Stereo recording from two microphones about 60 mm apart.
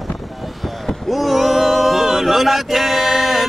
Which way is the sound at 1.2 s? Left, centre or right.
Centre.